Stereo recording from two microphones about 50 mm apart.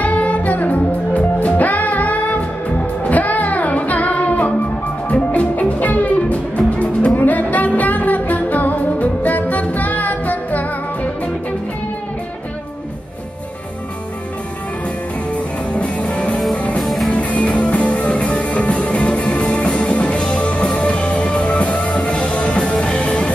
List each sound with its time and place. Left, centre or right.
0.0 s music: left
15.7 s music: left
16.8 s music: centre
17.1 s music: left